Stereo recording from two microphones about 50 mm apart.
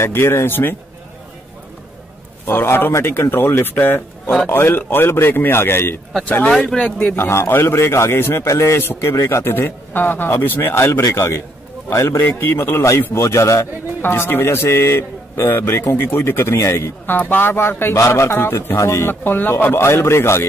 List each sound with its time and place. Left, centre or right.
0.0 s a man's voice: left
2.4 s a man's voice: left
7.2 s a man's voice: left
9.1 s a man's voice: left
9.4 s a man's voice: left
12.4 s a man's voice: left
14.0 s a man's voice: left
17.0 s a man's voice: left
17.9 s a man's voice: left
18.8 s a man's voice: left
19.0 s speech: left
19.7 s a man's voice: left